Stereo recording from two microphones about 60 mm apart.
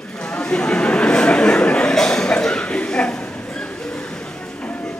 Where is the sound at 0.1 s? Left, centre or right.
Centre.